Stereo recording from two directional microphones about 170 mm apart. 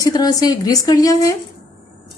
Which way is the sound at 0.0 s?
25° left (ahead or behind).